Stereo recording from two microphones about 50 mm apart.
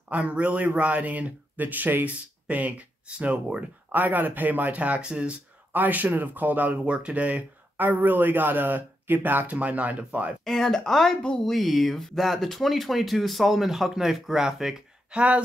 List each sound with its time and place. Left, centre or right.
0.1 s a man's voice: right
3.9 s a man's voice: right
5.0 s speech: centre
5.7 s a man's voice: right
6.9 s a man's voice: right
10.4 s speech: centre
15.1 s speech: right